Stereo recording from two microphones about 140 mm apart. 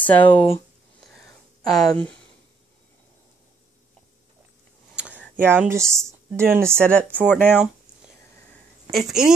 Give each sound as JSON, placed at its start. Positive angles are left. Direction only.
{"t": 0.0, "sound": "speech", "side_deg": 10}
{"t": 1.0, "sound": "a sound", "side_deg": 0}
{"t": 5.3, "sound": "speech", "side_deg": -15}
{"t": 6.7, "sound": "speech", "side_deg": 5}